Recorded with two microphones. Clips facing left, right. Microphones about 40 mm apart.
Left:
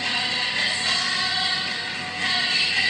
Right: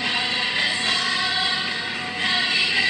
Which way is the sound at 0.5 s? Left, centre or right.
Centre.